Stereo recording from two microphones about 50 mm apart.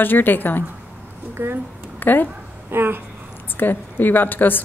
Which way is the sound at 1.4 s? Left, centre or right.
Right.